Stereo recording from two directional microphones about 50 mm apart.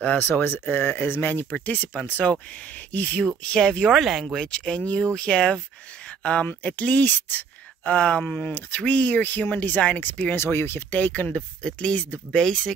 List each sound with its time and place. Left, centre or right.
0.0 s speech: left
0.3 s speech: left
3.3 s speech: centre
3.9 s speech: centre
4.5 s speech: left
8.5 s speech: left
10.3 s speech: left
10.9 s speech: left
11.3 s speech: left
12.4 s speech: centre